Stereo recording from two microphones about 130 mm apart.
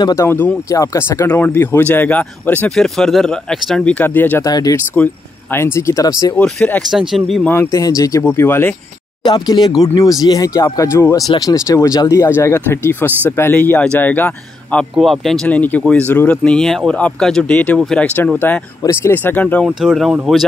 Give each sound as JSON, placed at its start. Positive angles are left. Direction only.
{"t": 0.0, "sound": "speech", "side_deg": 20}
{"t": 4.5, "sound": "speech", "side_deg": 30}
{"t": 4.9, "sound": "speech", "side_deg": 15}
{"t": 6.3, "sound": "speech", "side_deg": 10}
{"t": 6.9, "sound": "speech", "side_deg": 0}
{"t": 7.4, "sound": "speech", "side_deg": 15}
{"t": 7.7, "sound": "speech", "side_deg": 25}
{"t": 9.2, "sound": "speech", "side_deg": 35}
{"t": 15.0, "sound": "speech", "side_deg": 0}
{"t": 19.6, "sound": "speech", "side_deg": 0}